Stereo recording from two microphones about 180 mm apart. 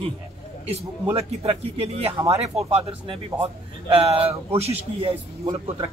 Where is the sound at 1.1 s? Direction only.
35° right (ahead or behind).